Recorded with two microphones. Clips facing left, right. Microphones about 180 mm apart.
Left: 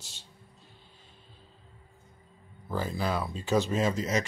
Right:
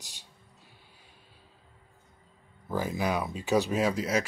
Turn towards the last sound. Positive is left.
turn(degrees=-10)  # may be behind; listen again after turning